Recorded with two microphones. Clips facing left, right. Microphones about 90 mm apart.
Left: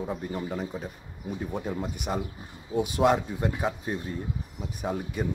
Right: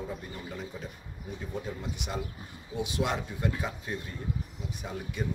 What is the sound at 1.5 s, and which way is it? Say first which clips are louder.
Speech: left 3 dB; 50° left (ahead or behind).